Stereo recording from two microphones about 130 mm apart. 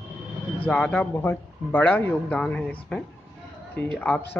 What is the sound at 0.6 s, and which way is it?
Speech, 10° left (ahead or behind).